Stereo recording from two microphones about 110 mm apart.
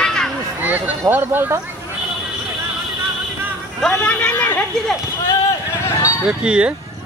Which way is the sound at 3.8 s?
5° left (ahead or behind).